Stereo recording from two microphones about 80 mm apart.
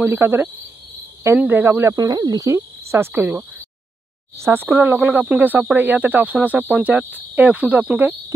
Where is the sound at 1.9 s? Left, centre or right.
Right.